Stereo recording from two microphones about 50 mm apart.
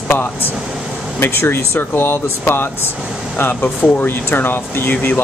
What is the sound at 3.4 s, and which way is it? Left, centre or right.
Speech, left.